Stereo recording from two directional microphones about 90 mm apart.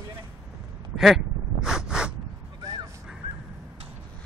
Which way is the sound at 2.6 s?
40° right (ahead or behind).